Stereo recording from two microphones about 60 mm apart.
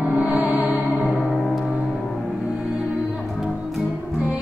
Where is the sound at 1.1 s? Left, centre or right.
Centre.